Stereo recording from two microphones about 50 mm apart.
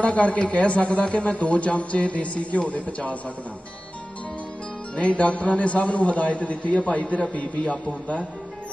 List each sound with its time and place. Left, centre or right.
0.0 s a man's voice: left
4.9 s a man's voice: left